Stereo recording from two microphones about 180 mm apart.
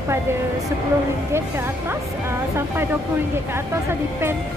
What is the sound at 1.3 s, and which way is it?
Speech, 15° right (ahead or behind).